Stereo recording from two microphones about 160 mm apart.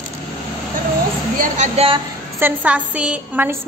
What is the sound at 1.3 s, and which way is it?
Speech, 50° right (ahead or behind).